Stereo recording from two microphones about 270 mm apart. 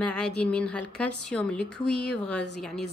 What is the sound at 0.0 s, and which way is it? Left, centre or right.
A woman's voice, centre.